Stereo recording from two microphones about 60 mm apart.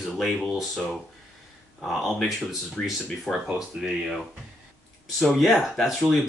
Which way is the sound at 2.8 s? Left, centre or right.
Left.